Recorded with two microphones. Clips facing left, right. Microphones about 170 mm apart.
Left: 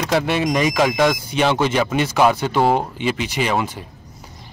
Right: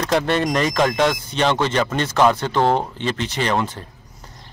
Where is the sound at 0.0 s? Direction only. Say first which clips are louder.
Even; 5° left (ahead or behind).